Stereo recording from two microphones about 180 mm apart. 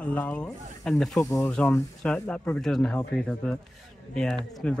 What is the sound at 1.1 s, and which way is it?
Speech, 15° left (ahead or behind).